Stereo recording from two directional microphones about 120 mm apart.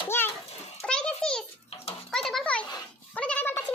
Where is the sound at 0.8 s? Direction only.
5° left (ahead or behind).